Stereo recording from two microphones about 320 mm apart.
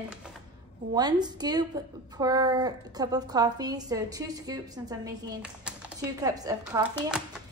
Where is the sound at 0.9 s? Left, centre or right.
Centre.